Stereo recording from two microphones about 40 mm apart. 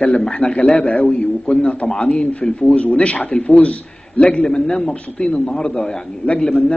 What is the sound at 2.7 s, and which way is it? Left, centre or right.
A man's voice, left.